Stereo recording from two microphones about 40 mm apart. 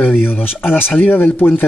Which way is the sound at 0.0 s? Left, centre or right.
Left.